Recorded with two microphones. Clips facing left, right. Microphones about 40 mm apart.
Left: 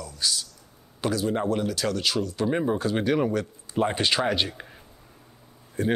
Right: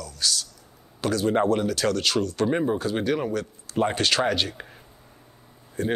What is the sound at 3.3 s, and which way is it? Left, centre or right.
Speech, left.